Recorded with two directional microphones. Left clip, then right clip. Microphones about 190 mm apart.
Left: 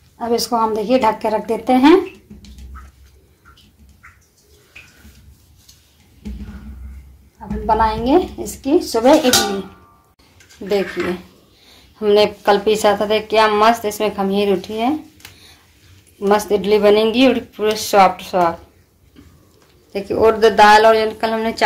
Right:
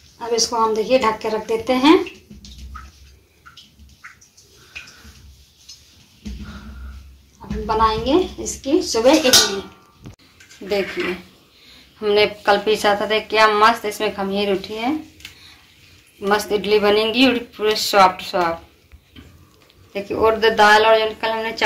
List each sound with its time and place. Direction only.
0.3 s speech: 60° left (ahead or behind)
7.6 s speech: 60° left (ahead or behind)
10.6 s speech: 45° left (ahead or behind)
12.0 s a woman's voice: 50° left (ahead or behind)
16.2 s speech: 55° left (ahead or behind)
19.9 s speech: 60° left (ahead or behind)